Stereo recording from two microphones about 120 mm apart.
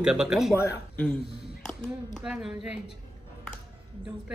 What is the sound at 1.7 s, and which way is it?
Speech, 5° left (ahead or behind).